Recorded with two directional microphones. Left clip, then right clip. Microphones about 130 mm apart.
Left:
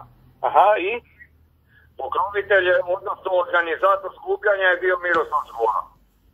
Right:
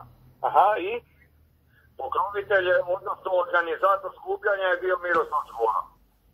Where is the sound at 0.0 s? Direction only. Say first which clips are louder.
Left 4 dB; centre (ahead or behind).